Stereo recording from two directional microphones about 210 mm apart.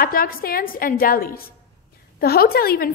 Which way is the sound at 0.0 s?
45° left (ahead or behind).